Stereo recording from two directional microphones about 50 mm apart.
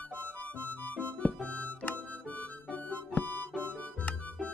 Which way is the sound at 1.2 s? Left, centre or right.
Centre.